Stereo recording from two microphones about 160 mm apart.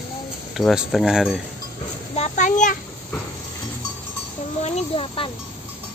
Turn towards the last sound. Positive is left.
turn(degrees=35)  # may be behind; listen again after turning